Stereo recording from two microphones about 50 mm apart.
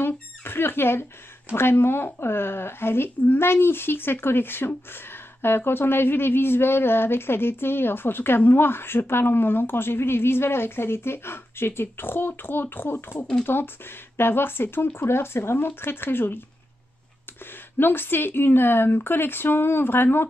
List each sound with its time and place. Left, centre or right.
0.0 s a sound: left
1.5 s speech: left
17.7 s speech: left